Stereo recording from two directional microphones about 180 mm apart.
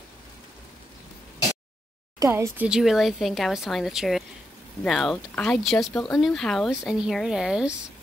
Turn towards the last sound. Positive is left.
turn(degrees=-5)  # may be behind; listen again after turning